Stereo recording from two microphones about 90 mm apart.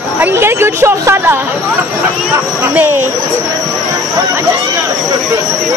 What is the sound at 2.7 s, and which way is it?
Speech, 20° right (ahead or behind).